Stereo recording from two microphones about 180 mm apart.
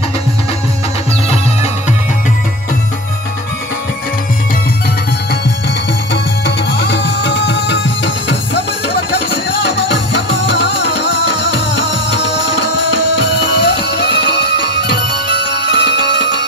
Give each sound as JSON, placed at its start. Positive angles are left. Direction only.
{"t": 6.4, "sound": "music", "side_deg": 75}
{"t": 9.8, "sound": "music", "side_deg": 75}